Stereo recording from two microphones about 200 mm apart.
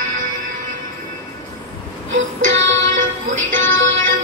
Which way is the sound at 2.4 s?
70° right (ahead or behind).